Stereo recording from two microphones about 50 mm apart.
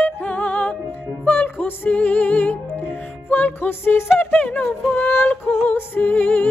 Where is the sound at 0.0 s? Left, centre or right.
Left.